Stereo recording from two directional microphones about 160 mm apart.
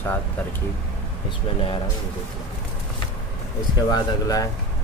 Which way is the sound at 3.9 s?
25° left (ahead or behind).